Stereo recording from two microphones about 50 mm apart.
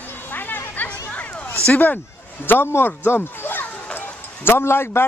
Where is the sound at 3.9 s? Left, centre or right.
Left.